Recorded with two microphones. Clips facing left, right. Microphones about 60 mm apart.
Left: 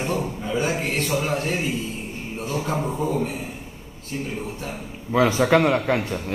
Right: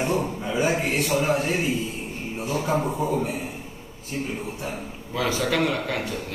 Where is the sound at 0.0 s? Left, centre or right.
Centre.